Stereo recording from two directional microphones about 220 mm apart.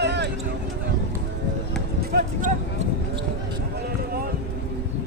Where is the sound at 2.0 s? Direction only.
45° right (ahead or behind).